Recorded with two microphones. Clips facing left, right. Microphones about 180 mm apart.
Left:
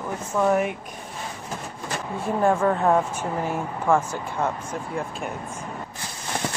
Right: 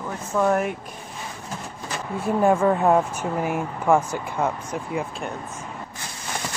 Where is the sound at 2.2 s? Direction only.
10° right (ahead or behind).